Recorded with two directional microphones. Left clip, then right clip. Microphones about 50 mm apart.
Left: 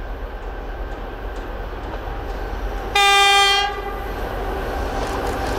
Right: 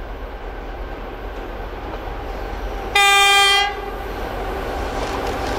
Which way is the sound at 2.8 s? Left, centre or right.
Right.